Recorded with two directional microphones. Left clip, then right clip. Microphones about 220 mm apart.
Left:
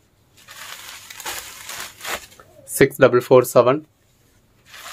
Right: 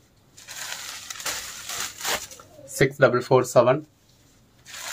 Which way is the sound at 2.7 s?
50° left (ahead or behind).